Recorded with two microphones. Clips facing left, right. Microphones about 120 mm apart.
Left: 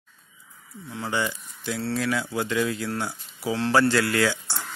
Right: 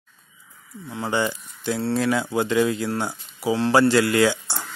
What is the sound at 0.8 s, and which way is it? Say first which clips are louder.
Speech: right 4 dB; 30° right (ahead or behind).